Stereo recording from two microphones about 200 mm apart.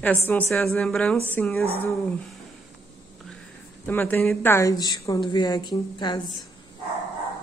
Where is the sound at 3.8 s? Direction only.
10° left (ahead or behind).